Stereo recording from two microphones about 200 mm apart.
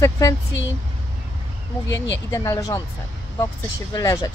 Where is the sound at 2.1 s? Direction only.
15° left (ahead or behind).